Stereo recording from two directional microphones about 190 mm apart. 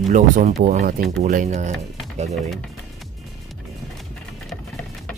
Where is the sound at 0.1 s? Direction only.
45° right (ahead or behind).